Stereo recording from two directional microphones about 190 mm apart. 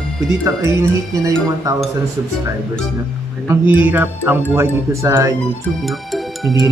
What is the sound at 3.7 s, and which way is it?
Speech, 10° right (ahead or behind).